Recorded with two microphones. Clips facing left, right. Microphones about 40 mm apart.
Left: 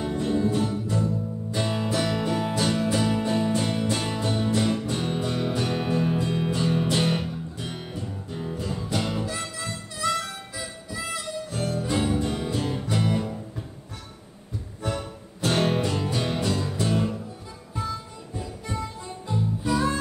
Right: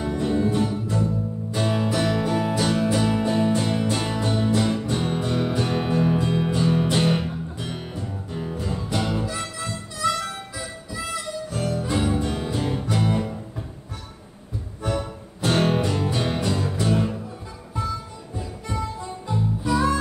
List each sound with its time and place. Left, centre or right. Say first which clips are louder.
0.0 s music: right 2 dB; right
15.4 s music: right 2 dB; right
18.3 s music: right 2 dB; right